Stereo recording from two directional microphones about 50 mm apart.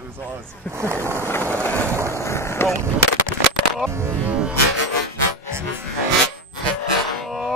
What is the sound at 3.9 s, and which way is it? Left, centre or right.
Speech, right.